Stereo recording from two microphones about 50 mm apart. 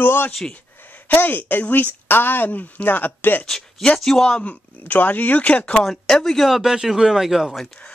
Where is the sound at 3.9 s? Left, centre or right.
Centre.